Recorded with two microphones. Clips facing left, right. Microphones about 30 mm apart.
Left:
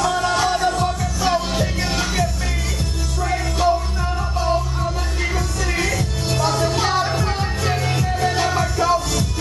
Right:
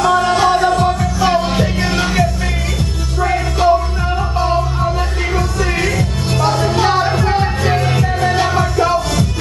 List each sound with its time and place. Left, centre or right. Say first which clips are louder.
0.0 s music: right 6 dB; centre